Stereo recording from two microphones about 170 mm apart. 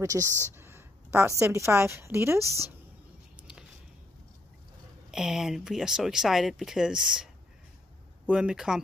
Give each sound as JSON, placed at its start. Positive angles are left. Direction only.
{"t": 0.0, "sound": "a sound", "side_deg": -20}
{"t": 1.4, "sound": "a woman's voice", "side_deg": -15}
{"t": 5.1, "sound": "speech", "side_deg": -5}
{"t": 8.3, "sound": "speech", "side_deg": -5}